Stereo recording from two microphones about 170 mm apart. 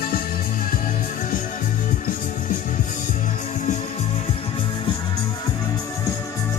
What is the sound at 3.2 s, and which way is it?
Music, 45° left (ahead or behind).